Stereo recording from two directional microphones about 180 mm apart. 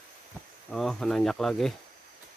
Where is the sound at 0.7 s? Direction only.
Centre (ahead or behind).